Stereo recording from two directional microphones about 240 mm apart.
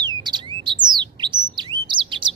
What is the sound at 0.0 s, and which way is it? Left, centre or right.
Bird, centre.